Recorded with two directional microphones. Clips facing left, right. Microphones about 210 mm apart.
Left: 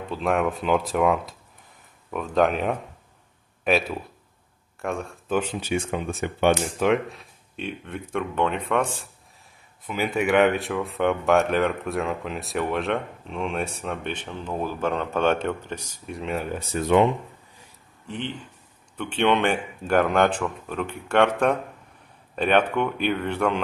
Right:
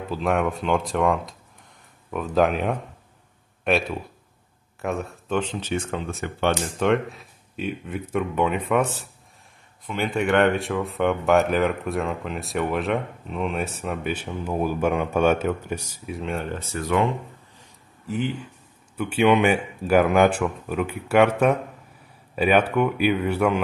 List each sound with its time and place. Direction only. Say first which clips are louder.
0.1 s speech: even; centre (ahead or behind)
5.4 s speech: left 1 dB; 10° left (ahead or behind)
6.9 s speech: right 2 dB; centre (ahead or behind)
9.8 s speech: even; 5° left (ahead or behind)
16.5 s speech: left 5 dB; 20° left (ahead or behind)
18.0 s speech: right 5 dB; 5° right (ahead or behind)